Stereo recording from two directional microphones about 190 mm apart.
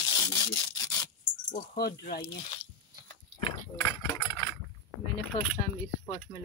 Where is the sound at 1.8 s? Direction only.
55° left (ahead or behind).